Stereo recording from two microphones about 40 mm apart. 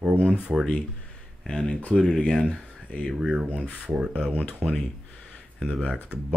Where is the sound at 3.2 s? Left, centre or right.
Centre.